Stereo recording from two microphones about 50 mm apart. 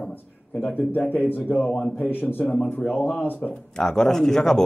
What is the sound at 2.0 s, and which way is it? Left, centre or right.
Speech, left.